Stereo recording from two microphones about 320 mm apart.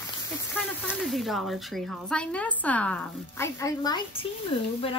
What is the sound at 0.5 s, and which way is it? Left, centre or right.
Speech, centre.